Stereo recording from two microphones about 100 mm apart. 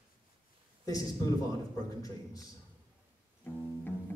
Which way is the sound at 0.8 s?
35° left (ahead or behind).